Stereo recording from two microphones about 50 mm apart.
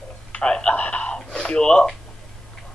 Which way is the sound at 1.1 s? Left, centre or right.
Centre.